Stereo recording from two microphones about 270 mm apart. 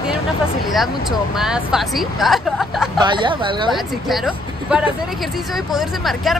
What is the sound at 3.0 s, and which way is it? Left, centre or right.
Speech, centre.